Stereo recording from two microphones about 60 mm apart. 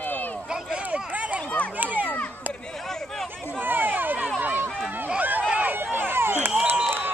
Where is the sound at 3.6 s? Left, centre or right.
Right.